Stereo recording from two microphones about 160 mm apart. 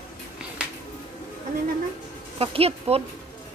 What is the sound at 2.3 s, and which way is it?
Speech, 35° right (ahead or behind).